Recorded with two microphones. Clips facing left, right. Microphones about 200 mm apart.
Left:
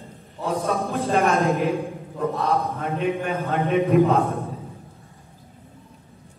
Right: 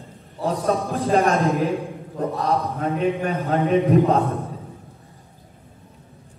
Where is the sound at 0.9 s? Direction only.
30° right (ahead or behind).